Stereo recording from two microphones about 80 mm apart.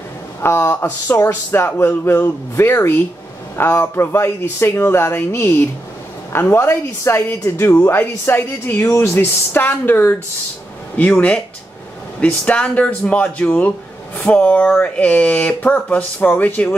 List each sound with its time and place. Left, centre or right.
0.4 s a woman's voice: left
12.4 s speech: centre